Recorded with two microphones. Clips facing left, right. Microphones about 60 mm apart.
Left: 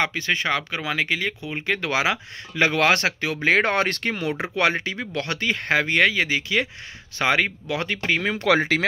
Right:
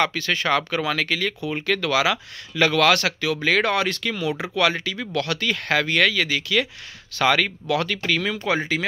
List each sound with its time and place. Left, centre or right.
0.0 s speech: left
8.4 s speech: left